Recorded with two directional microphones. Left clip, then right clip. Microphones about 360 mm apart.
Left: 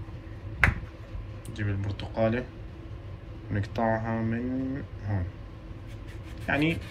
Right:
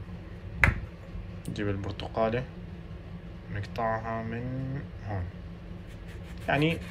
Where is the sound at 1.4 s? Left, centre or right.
Centre.